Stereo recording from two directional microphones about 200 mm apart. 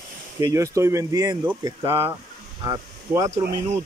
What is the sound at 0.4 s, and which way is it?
Speech, 15° right (ahead or behind).